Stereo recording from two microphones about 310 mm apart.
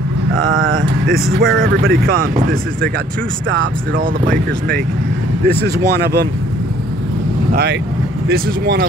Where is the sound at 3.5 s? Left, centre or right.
Right.